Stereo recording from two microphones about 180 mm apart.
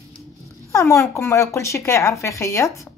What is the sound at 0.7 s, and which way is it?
Speech, 15° left (ahead or behind).